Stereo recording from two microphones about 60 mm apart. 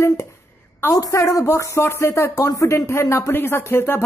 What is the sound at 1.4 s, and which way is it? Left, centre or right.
A woman's voice, left.